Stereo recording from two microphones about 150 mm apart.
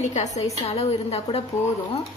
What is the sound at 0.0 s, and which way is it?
Speech, 50° left (ahead or behind).